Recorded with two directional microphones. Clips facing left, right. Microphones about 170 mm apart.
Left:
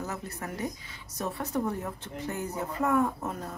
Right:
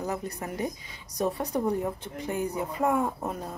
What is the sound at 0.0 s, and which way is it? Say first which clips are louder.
A woman's voice: right 4 dB; 15° right (ahead or behind).